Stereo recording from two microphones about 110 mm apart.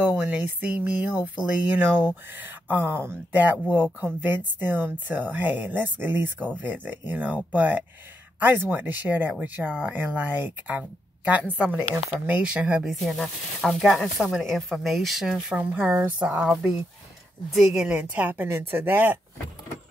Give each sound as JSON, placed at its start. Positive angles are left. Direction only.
{"t": 0.0, "sound": "speech", "side_deg": -10}
{"t": 13.0, "sound": "speech", "side_deg": 5}
{"t": 17.8, "sound": "speech", "side_deg": -15}